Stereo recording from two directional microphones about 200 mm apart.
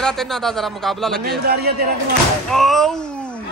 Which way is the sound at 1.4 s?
50° right (ahead or behind).